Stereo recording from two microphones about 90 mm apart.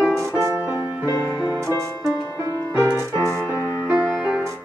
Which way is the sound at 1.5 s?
35° right (ahead or behind).